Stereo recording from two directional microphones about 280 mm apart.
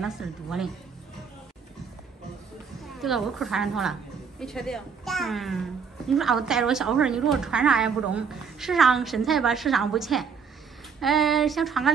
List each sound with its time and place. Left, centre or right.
0.0 s a child's voice: centre
2.8 s a woman's voice: centre